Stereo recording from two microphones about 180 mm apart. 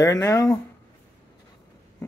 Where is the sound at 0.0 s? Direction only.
20° left (ahead or behind).